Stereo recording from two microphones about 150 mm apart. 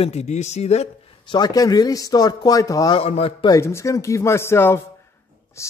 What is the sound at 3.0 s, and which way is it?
Speech, 40° left (ahead or behind).